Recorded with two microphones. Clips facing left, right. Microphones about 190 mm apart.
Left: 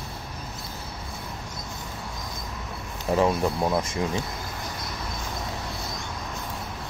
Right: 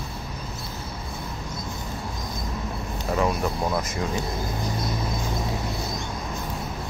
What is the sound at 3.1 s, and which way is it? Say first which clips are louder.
Speech: left 2 dB; 30° left (ahead or behind).